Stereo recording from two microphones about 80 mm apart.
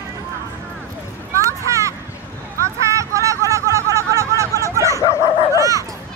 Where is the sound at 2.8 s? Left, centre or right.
Right.